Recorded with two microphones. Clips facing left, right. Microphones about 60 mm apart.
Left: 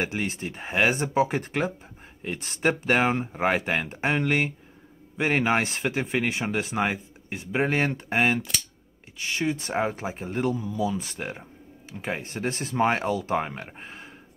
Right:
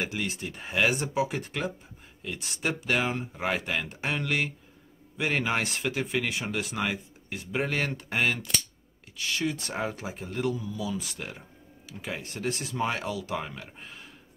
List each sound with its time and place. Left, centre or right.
0.0 s speech: left